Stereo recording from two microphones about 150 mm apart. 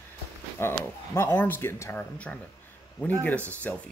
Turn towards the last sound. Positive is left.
turn(degrees=10)  # may be behind; listen again after turning